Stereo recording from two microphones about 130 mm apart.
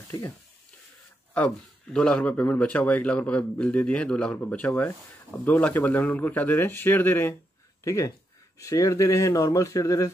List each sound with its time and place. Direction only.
1.3 s speech: 10° left (ahead or behind); by 10.1 s 25° left (ahead or behind)